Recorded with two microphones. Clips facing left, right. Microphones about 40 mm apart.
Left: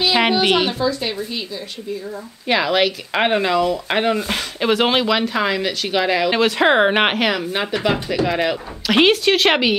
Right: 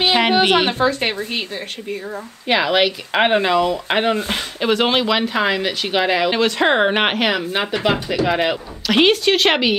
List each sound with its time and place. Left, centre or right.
0.3 s a woman's voice: right
0.7 s speech: right
2.4 s speech: centre
4.3 s speech: centre
6.3 s speech: centre
8.8 s speech: centre